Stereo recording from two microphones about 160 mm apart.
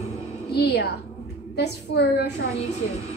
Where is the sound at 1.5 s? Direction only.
90° left.